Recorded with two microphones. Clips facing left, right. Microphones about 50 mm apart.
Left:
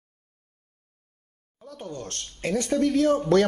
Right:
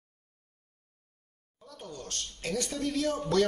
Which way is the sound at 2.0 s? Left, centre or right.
Left.